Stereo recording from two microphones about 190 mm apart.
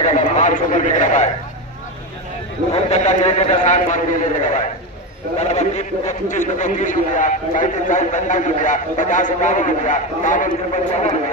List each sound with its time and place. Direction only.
0.4 s a man's voice: 40° left (ahead or behind)
2.7 s a man's voice: 35° left (ahead or behind)
5.4 s a man's voice: 35° left (ahead or behind)